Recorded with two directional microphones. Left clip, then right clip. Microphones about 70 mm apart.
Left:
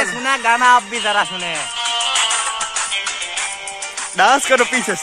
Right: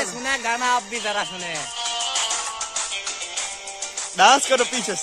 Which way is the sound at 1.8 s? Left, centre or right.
Right.